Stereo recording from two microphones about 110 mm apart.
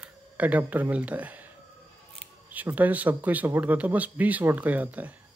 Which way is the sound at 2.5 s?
15° right (ahead or behind).